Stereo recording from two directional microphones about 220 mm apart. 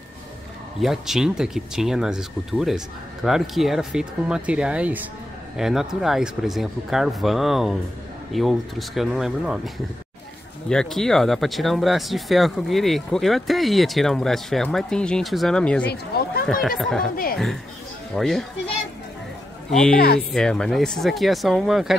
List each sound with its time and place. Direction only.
0.7 s speech: centre (ahead or behind)
10.7 s speech: centre (ahead or behind)
16.1 s a sound: 45° left (ahead or behind)
16.6 s speech: centre (ahead or behind)
18.1 s speech: centre (ahead or behind)
19.7 s speech: 5° left (ahead or behind)